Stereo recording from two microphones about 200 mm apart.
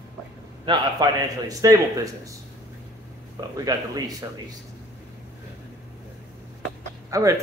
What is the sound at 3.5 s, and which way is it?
Speech, 20° right (ahead or behind).